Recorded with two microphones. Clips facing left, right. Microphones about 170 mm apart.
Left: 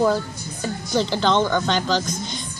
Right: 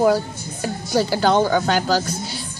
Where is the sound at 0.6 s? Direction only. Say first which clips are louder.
Right 2 dB; 10° right (ahead or behind).